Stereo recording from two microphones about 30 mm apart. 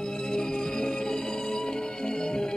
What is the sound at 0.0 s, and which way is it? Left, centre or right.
Music, left.